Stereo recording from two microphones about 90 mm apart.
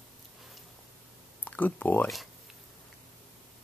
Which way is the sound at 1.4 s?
20° left (ahead or behind).